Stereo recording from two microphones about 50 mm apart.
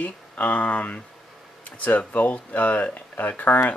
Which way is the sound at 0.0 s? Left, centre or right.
Left.